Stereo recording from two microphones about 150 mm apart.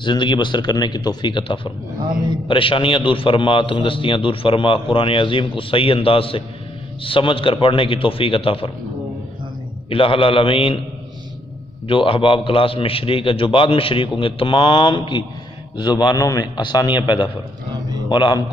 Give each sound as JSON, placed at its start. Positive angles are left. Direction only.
{"t": 0.0, "sound": "a man's voice", "side_deg": 30}
{"t": 9.8, "sound": "a man's voice", "side_deg": 35}
{"t": 11.9, "sound": "a man's voice", "side_deg": 35}